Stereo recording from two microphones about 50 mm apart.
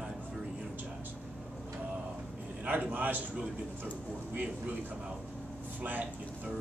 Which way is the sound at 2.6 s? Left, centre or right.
Right.